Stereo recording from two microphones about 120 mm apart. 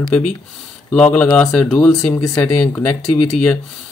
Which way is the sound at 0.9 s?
10° left (ahead or behind).